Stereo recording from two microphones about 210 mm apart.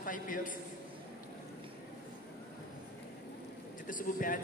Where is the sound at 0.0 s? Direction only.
40° left (ahead or behind).